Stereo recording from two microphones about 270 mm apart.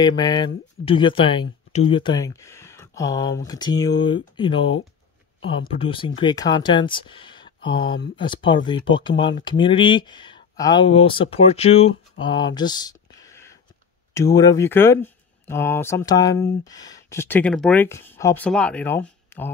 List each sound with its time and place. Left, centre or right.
0.0 s speech: centre